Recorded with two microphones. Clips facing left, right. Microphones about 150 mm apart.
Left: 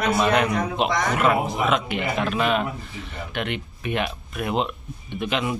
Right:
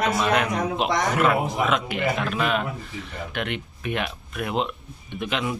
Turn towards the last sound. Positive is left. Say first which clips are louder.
# left 2 dB
turn(degrees=0)  # may be behind; listen again after turning